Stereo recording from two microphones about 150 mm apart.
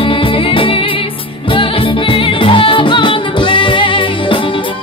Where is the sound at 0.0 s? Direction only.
35° left (ahead or behind).